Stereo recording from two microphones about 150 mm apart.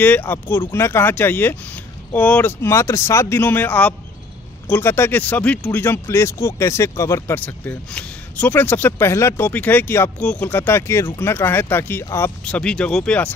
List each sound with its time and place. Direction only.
0.0 s speech: 10° left (ahead or behind)
12.4 s speech: 5° left (ahead or behind)